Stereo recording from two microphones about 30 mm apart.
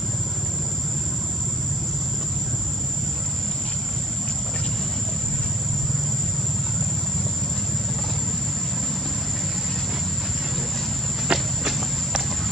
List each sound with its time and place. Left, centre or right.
11.3 s cricket: right